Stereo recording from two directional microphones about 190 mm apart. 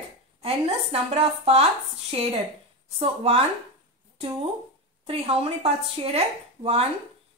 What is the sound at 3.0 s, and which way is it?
Speech, 30° right (ahead or behind).